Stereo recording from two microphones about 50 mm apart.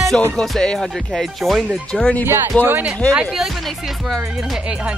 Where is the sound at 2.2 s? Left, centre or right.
Right.